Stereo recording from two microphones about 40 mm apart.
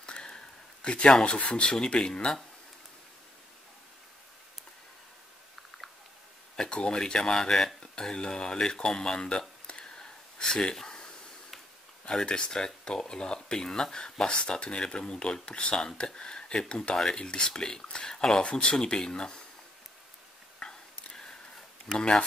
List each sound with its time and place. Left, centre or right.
0.0 s a sound: left
0.8 s speech: left
6.7 s speech: left
9.7 s a sound: centre
12.1 s speech: left
18.4 s speech: left
20.6 s whispering: centre
21.1 s a sound: centre
21.9 s speech: centre